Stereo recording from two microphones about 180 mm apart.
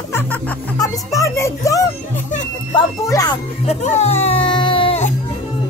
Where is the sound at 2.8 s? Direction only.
20° left (ahead or behind).